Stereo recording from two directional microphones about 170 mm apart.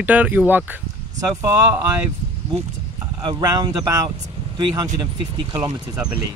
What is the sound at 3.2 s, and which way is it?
Speech, 25° right (ahead or behind).